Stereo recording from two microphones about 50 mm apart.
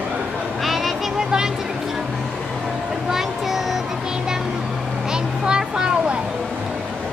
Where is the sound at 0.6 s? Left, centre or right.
Centre.